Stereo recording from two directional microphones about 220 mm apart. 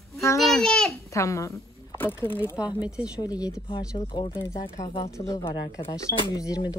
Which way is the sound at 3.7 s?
25° left (ahead or behind).